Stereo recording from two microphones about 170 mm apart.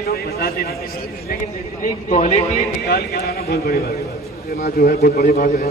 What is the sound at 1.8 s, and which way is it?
Speech, 45° left (ahead or behind).